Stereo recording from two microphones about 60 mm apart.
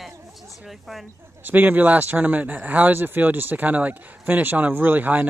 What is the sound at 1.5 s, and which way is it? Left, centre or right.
Speech, right.